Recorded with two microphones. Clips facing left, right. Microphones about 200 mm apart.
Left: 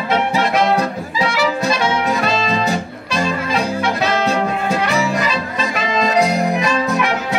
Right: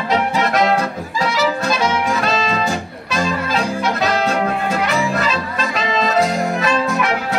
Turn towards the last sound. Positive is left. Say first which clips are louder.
# left 1 dB
turn(degrees=20)  # may be behind; listen again after turning